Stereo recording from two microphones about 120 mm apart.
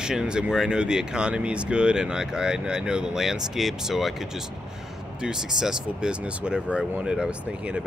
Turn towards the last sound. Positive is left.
turn(degrees=-10)  # may be behind; listen again after turning